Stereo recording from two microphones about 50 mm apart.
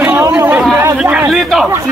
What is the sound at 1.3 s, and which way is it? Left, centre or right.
Speech, centre.